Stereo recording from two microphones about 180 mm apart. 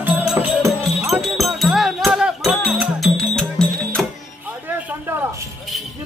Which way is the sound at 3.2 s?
5° left (ahead or behind).